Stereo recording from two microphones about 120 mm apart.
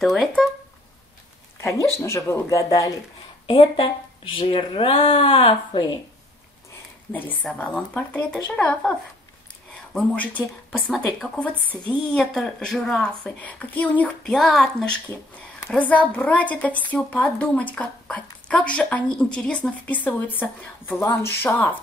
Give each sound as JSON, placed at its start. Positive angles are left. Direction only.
{"t": 2.0, "sound": "speech", "side_deg": 25}
{"t": 3.4, "sound": "speech", "side_deg": 50}
{"t": 7.1, "sound": "a woman's voice", "side_deg": 15}
{"t": 9.9, "sound": "a woman's voice", "side_deg": 10}
{"t": 11.5, "sound": "a woman's voice", "side_deg": -15}
{"t": 12.1, "sound": "a woman's voice", "side_deg": 5}